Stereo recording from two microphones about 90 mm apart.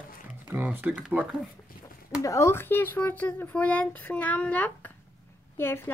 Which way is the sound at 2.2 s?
35° left (ahead or behind).